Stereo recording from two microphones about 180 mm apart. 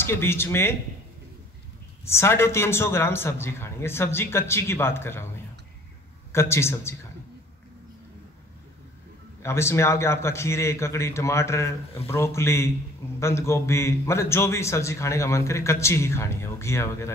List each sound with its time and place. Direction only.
0.0 s a man's voice: 15° left (ahead or behind)
2.0 s a man's voice: 15° left (ahead or behind)
6.5 s a man's voice: 15° left (ahead or behind)
9.4 s a man's voice: 15° left (ahead or behind)